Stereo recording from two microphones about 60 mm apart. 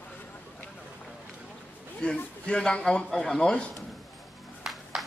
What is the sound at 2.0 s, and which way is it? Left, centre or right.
A man's voice, centre.